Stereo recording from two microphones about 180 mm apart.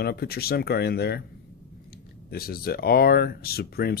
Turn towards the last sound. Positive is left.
turn(degrees=60)  # may be behind; listen again after turning